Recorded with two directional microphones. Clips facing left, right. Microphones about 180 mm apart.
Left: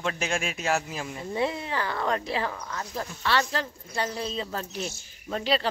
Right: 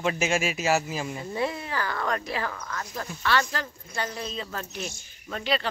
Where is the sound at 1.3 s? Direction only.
25° left (ahead or behind).